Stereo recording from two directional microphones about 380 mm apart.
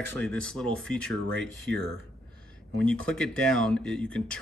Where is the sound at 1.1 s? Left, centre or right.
Right.